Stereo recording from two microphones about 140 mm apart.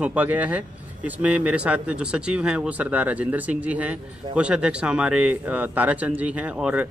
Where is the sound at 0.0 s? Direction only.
10° right (ahead or behind).